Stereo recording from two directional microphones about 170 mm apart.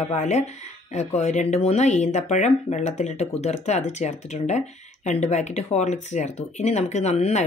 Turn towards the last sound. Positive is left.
turn(degrees=40)  # may be behind; listen again after turning